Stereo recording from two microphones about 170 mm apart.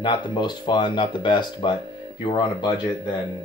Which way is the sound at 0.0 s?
25° left (ahead or behind).